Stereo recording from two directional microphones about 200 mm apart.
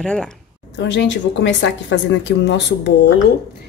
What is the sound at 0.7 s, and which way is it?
A woman's voice, 65° left (ahead or behind).